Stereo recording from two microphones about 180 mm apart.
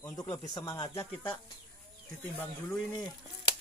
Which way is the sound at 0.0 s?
20° left (ahead or behind).